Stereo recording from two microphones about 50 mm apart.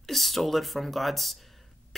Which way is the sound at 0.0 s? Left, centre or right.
Centre.